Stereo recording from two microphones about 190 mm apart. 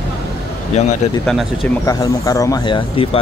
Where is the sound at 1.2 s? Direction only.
Centre (ahead or behind).